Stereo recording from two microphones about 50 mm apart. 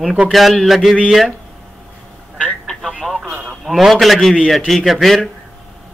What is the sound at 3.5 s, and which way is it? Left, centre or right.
A man's voice, centre.